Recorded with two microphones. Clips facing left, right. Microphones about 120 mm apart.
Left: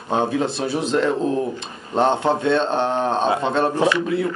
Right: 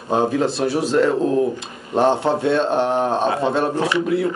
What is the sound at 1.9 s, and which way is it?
Speech, 5° right (ahead or behind).